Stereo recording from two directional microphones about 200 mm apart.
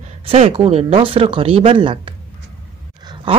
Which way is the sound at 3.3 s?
25° right (ahead or behind).